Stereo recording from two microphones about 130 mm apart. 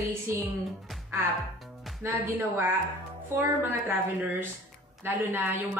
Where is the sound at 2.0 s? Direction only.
20° right (ahead or behind).